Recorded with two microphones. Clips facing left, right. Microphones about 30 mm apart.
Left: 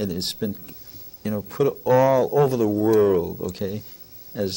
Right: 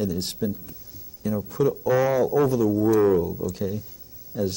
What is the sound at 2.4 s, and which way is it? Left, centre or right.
Speech, left.